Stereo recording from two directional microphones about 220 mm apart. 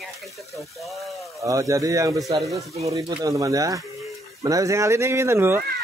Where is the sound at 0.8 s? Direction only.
Centre (ahead or behind).